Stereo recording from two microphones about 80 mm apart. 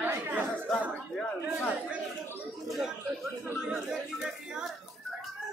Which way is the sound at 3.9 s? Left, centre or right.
Centre.